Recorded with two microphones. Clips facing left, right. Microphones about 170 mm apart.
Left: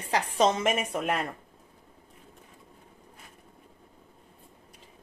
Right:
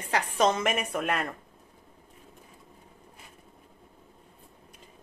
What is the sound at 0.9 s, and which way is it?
Speech, 30° left (ahead or behind).